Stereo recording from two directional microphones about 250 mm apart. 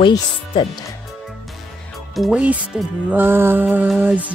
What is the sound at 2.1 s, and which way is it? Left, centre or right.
Music, centre.